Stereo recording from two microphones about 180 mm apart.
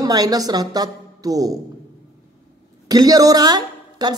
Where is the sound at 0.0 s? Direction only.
20° right (ahead or behind).